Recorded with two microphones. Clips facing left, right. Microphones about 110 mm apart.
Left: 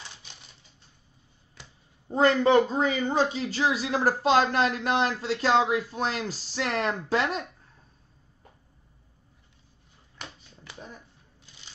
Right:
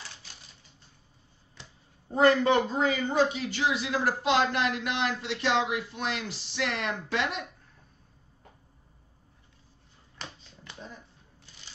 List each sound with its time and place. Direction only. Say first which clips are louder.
2.1 s speech: left 2 dB; 30° left (ahead or behind)